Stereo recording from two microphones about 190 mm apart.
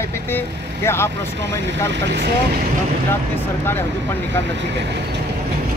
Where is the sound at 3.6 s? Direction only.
10° left (ahead or behind).